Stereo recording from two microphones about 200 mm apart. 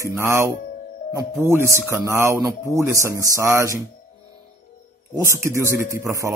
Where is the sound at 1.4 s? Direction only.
10° right (ahead or behind).